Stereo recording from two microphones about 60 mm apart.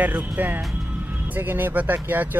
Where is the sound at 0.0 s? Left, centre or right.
Right.